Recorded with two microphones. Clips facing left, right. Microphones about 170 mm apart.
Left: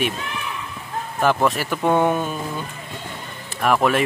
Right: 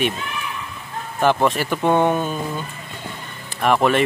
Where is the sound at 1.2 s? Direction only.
Centre (ahead or behind).